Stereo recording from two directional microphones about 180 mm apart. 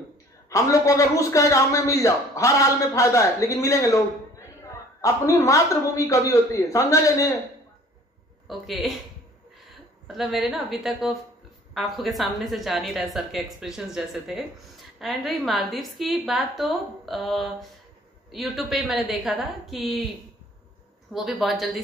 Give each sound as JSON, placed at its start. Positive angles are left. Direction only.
{"t": 0.5, "sound": "a man's voice", "side_deg": 20}
{"t": 8.5, "sound": "a woman's voice", "side_deg": 0}
{"t": 10.0, "sound": "a woman's voice", "side_deg": 0}